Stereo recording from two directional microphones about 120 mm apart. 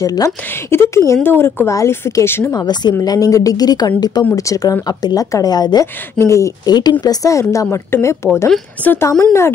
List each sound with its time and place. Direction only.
0.0 s speech: 30° left (ahead or behind)
2.5 s a woman's voice: 35° left (ahead or behind); by 9.1 s 15° left (ahead or behind)